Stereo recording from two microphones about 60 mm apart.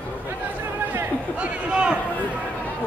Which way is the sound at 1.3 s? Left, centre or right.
Right.